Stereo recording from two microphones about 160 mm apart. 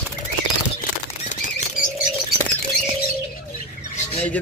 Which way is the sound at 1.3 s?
50° left (ahead or behind).